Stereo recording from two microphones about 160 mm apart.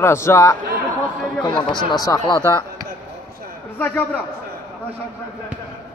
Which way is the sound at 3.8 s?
10° left (ahead or behind).